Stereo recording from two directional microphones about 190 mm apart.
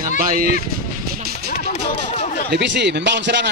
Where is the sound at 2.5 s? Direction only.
65° right (ahead or behind).